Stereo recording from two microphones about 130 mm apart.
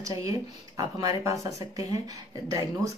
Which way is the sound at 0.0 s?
25° right (ahead or behind).